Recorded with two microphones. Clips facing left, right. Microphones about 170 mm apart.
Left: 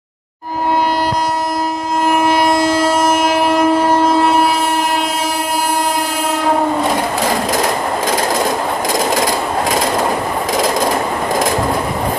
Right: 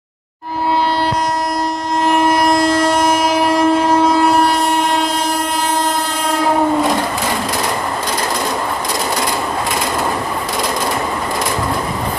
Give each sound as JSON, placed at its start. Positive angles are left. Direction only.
{"t": 2.0, "sound": "train", "side_deg": 5}